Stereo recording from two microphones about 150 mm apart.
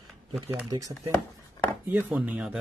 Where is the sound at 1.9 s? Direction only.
10° right (ahead or behind).